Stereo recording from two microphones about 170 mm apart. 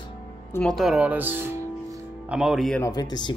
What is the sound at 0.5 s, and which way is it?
Speech, 5° left (ahead or behind).